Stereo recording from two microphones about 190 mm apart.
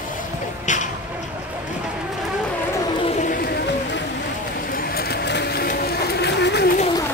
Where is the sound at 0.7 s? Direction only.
40° left (ahead or behind).